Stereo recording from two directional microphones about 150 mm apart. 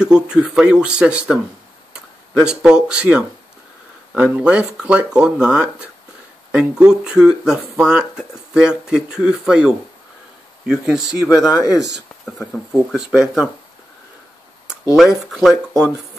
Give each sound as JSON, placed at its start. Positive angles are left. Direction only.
{"t": 0.0, "sound": "speech", "side_deg": -5}
{"t": 11.2, "sound": "speech", "side_deg": 25}
{"t": 11.8, "sound": "speech", "side_deg": -5}
{"t": 14.7, "sound": "speech", "side_deg": 0}